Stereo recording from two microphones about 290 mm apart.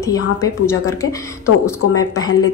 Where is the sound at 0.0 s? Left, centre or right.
Centre.